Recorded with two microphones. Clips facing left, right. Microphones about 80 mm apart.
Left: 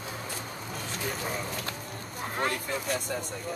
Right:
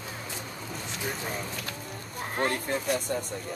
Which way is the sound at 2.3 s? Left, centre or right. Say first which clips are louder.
Right 2 dB; right.